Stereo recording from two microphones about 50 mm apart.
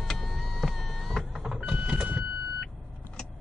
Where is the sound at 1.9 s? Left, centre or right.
Right.